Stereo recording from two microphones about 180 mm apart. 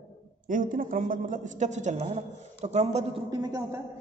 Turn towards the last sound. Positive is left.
turn(degrees=-20)  # may be behind; listen again after turning